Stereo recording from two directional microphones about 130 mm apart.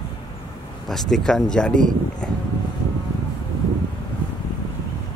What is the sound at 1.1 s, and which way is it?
Speech, 5° left (ahead or behind).